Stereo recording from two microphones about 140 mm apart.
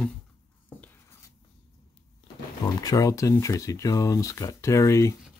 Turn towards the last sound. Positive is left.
turn(degrees=20)  # may be behind; listen again after turning